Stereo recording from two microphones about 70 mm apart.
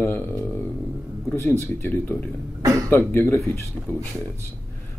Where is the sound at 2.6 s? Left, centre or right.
Right.